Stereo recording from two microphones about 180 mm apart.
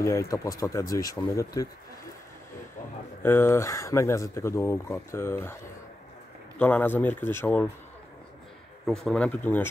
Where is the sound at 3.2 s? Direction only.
15° left (ahead or behind).